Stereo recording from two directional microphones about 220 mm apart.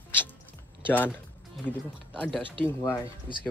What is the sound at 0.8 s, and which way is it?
Speech, 10° left (ahead or behind).